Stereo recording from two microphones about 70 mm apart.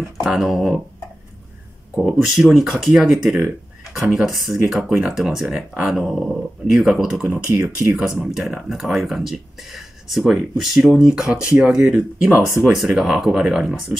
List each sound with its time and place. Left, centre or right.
0.2 s speech: centre
2.0 s speech: centre
7.2 s speech: centre